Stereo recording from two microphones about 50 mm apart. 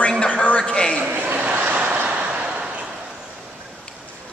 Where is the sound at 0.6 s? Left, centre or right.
Left.